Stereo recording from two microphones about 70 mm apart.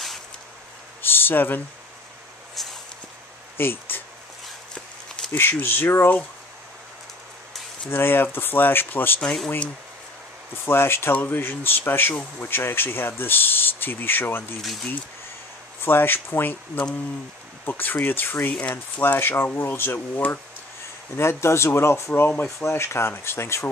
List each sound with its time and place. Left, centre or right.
1.0 s a sound: left
2.5 s a sound: centre
3.5 s speech: left
5.4 s speech: left
7.9 s speech: left
9.2 s speech: centre
10.5 s speech: left
14.6 s speech: centre
15.8 s speech: left